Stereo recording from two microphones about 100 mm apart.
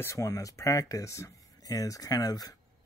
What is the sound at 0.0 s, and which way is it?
Speech, 30° left (ahead or behind).